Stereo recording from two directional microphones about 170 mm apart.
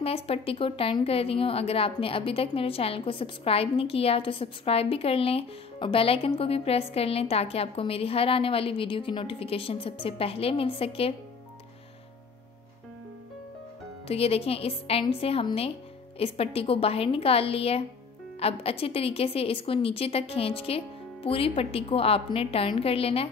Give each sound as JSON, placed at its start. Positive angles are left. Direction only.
{"t": 0.0, "sound": "a woman's voice", "side_deg": 35}
{"t": 14.0, "sound": "a woman's voice", "side_deg": 35}